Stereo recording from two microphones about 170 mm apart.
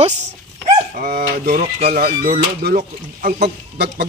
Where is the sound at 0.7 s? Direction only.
55° right (ahead or behind).